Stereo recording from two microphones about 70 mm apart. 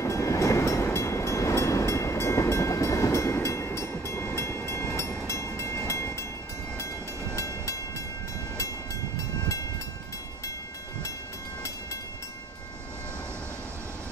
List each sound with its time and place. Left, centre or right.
0.0 s train: left
7.3 s train: left